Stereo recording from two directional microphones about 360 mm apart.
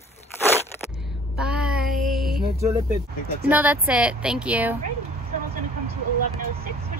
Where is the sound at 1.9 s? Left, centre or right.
Right.